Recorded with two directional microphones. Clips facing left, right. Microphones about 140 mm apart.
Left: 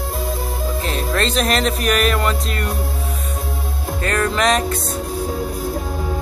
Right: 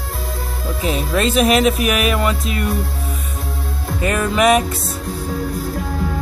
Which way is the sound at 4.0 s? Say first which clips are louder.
Right 3 dB; 10° right (ahead or behind).